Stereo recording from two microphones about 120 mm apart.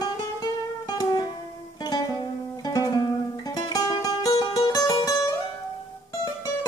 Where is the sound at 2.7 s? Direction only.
30° left (ahead or behind).